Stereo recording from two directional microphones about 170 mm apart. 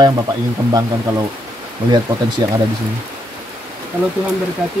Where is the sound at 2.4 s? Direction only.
20° right (ahead or behind).